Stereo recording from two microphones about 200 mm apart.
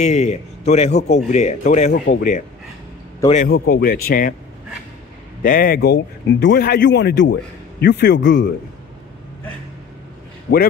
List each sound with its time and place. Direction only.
0.0 s a man's voice: 35° left (ahead or behind)
3.4 s speech: 50° left (ahead or behind)
5.4 s speech: 45° left (ahead or behind); by 8.5 s 60° left (ahead or behind)
10.5 s speech: 60° left (ahead or behind)